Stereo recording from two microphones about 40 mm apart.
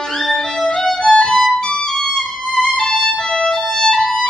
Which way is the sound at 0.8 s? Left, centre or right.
Centre.